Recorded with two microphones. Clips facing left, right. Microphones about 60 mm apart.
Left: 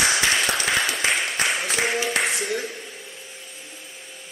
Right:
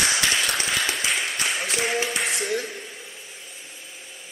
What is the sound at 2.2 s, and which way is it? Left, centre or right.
Speech, centre.